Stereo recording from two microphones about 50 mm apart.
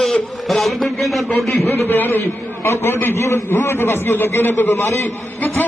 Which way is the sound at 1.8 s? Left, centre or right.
Left.